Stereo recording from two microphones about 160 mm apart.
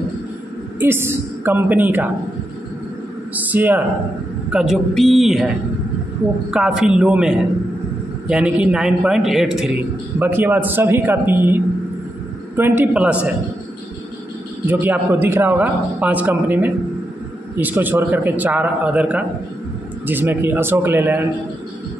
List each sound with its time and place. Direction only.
0.7 s a man's voice: 15° right (ahead or behind)
3.3 s a man's voice: 10° right (ahead or behind)
6.5 s a man's voice: 5° right (ahead or behind)
14.7 s a man's voice: 10° right (ahead or behind)